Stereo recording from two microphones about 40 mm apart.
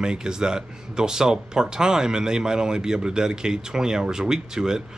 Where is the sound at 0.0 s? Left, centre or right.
Centre.